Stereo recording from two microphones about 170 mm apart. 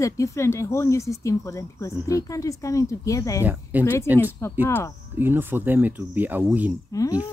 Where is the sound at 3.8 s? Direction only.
15° left (ahead or behind).